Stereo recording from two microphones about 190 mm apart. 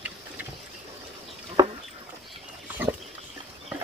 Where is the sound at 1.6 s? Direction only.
20° right (ahead or behind).